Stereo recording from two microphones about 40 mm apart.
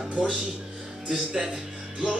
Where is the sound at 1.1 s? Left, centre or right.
Centre.